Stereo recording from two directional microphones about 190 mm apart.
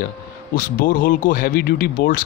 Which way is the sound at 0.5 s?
45° left (ahead or behind).